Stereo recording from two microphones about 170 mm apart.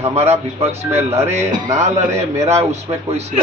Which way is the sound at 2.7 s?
40° right (ahead or behind).